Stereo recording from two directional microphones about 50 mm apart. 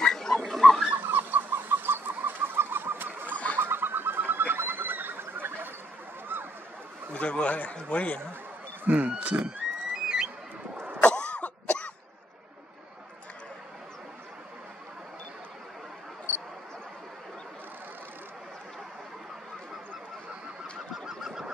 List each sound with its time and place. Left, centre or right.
0.0 s dog: centre
0.9 s chicken: right
3.5 s a sound: right
6.3 s goose: right
7.1 s speech: left
8.8 s speech: right
10.0 s a sound: centre
11.0 s cough: left
20.9 s goose: centre